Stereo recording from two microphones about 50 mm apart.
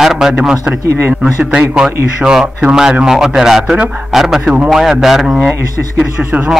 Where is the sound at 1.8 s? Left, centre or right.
Centre.